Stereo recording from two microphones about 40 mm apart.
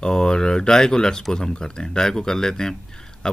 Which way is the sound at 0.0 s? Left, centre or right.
Centre.